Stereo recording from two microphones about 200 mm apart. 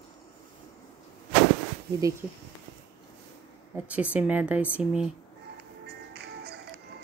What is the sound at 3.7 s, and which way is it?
Speech, 5° right (ahead or behind).